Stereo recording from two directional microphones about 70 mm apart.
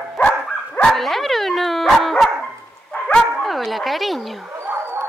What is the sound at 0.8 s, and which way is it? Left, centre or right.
Speech, centre.